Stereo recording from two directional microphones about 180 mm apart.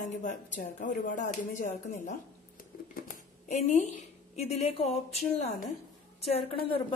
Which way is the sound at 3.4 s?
40° left (ahead or behind).